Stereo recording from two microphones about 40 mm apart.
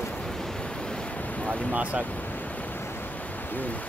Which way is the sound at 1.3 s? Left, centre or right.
Left.